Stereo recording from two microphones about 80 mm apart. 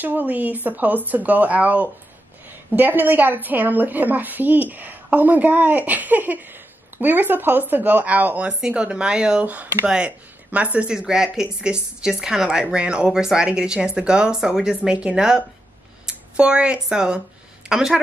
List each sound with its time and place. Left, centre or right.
0.0 s a woman's voice: right